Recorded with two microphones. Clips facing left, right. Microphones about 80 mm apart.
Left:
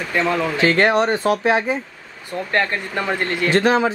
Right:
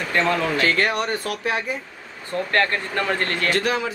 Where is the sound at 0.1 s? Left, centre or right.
Centre.